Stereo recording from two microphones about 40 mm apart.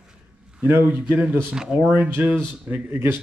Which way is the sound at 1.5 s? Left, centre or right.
Centre.